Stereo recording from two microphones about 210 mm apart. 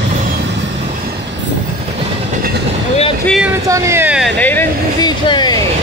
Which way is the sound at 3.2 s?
Centre (ahead or behind).